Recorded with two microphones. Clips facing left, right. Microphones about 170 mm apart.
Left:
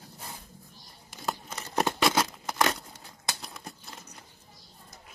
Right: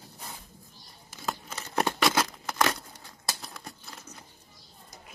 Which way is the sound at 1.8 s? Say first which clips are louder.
Even; centre (ahead or behind).